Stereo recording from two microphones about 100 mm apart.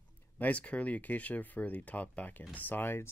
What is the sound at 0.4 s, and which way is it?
Speech, 15° left (ahead or behind).